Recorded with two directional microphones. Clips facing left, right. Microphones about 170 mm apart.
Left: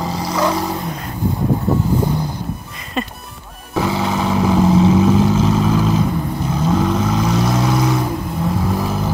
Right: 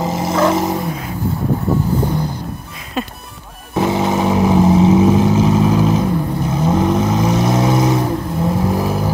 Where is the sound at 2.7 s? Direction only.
Centre (ahead or behind).